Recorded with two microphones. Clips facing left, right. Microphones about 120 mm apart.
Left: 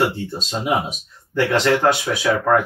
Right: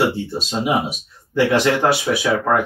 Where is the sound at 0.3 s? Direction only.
10° right (ahead or behind).